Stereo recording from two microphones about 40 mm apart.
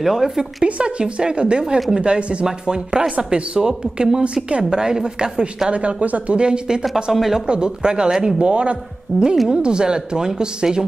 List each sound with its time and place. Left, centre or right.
0.0 s a woman's voice: centre
0.7 s speech: right
2.4 s speech: centre
4.2 s speech: right
4.6 s a woman's voice: centre
5.7 s speech: right
6.4 s speech: right
7.1 s a woman's voice: centre
7.4 s speech: right
8.4 s speech: right
9.1 s a woman's voice: centre
9.5 s speech: right